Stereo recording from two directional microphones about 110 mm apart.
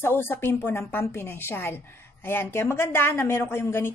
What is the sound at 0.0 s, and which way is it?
Speech, 20° left (ahead or behind).